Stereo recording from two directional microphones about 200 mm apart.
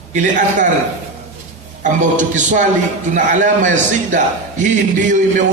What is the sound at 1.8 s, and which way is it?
A man's voice, 40° right (ahead or behind).